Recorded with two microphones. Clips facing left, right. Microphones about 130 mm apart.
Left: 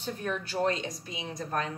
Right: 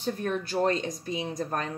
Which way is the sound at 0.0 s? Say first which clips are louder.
Right 4 dB; 40° right (ahead or behind).